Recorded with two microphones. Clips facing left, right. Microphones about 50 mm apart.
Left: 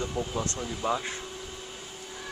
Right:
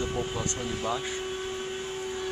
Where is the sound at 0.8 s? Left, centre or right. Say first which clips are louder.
Left 3 dB; centre.